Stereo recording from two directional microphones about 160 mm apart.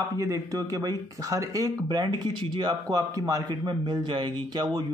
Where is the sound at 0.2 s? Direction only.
20° right (ahead or behind).